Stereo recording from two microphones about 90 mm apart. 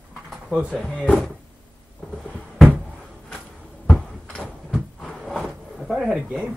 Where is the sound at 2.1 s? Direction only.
Centre (ahead or behind).